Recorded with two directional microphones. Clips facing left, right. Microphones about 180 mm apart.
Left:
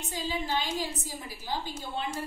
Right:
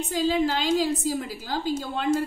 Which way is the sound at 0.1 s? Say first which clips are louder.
Right 8 dB; 90° right.